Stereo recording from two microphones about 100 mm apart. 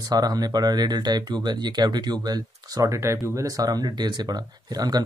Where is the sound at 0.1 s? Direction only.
40° right (ahead or behind).